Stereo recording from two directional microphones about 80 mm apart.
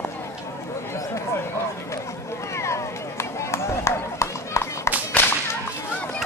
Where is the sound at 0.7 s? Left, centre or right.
Left.